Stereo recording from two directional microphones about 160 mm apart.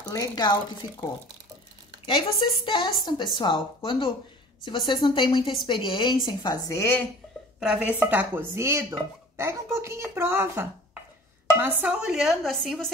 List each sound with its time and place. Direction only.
0.1 s a woman's voice: 25° left (ahead or behind)
2.0 s a woman's voice: 30° left (ahead or behind); by 7.1 s 15° left (ahead or behind)
7.6 s a woman's voice: 10° right (ahead or behind)